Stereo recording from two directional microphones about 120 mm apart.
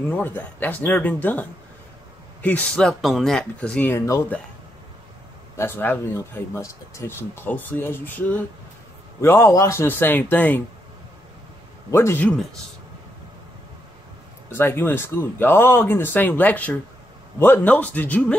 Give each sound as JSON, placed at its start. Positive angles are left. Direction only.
{"t": 0.1, "sound": "speech", "side_deg": 15}
{"t": 3.9, "sound": "speech", "side_deg": 20}
{"t": 5.6, "sound": "speech", "side_deg": 20}
{"t": 11.9, "sound": "speech", "side_deg": 20}
{"t": 14.5, "sound": "speech", "side_deg": 20}